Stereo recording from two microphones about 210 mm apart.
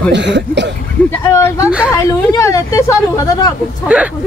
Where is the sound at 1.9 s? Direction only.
15° left (ahead or behind).